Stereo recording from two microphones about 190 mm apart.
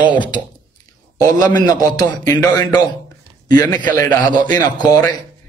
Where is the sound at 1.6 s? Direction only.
20° left (ahead or behind).